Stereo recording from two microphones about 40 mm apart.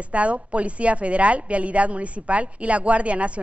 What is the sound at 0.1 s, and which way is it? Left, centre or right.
A woman's voice, right.